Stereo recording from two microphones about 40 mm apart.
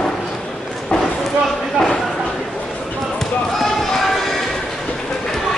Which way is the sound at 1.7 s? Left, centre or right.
Centre.